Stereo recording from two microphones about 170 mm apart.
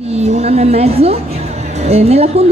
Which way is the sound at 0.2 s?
40° right (ahead or behind).